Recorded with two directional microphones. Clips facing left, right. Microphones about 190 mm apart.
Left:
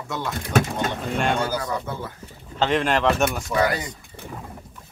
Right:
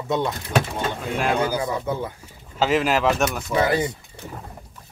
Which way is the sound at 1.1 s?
5° right (ahead or behind).